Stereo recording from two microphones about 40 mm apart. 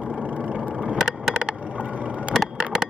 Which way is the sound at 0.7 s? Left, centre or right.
Right.